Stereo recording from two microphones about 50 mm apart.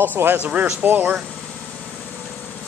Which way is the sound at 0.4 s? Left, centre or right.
Right.